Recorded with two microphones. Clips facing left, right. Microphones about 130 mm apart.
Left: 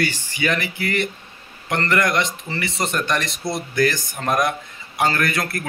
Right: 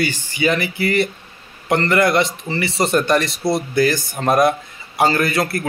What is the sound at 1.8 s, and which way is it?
A man's voice, 30° right (ahead or behind).